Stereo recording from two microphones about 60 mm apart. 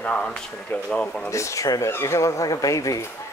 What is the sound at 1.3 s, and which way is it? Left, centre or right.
Speech, left.